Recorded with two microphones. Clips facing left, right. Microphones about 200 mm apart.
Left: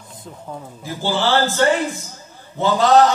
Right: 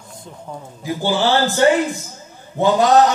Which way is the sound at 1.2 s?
15° right (ahead or behind).